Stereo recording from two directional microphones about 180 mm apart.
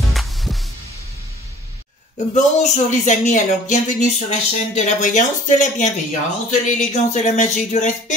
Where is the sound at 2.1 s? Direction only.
40° left (ahead or behind).